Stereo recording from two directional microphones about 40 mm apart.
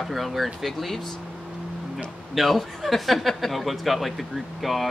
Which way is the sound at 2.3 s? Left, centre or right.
Centre.